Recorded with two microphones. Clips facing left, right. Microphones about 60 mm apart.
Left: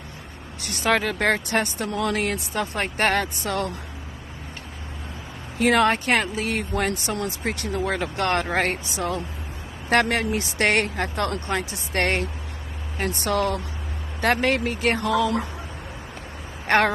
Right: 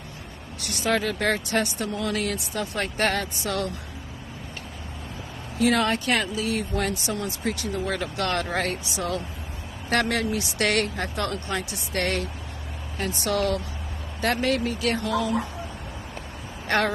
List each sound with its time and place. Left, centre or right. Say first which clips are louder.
0.8 s speech: left 3 dB; left
1.9 s speech: left 3 dB; left
2.1 s a woman's voice: left 3 dB; left
5.6 s a woman's voice: left 3 dB; left
16.6 s speech: left 4 dB; left